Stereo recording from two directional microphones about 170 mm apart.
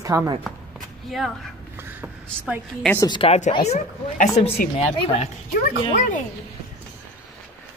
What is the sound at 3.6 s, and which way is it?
Speech, 45° left (ahead or behind).